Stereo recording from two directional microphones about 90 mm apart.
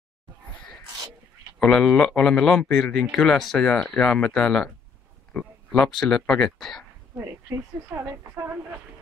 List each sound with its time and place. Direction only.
1.6 s a man's voice: 15° left (ahead or behind)
5.7 s speech: 5° left (ahead or behind)
7.2 s a woman's voice: 25° right (ahead or behind)